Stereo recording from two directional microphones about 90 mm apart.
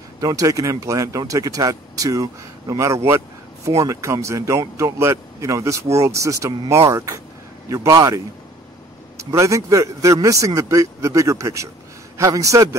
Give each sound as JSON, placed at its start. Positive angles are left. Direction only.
{"t": 0.2, "sound": "speech", "side_deg": -40}